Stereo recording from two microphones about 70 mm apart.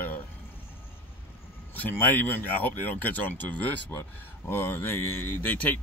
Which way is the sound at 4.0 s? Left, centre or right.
Left.